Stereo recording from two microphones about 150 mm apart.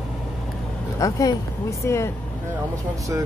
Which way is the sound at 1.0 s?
25° left (ahead or behind).